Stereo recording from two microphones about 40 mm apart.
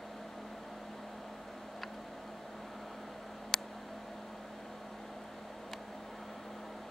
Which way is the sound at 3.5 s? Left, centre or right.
Centre.